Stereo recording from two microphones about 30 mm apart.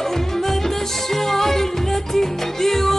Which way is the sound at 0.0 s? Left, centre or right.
Centre.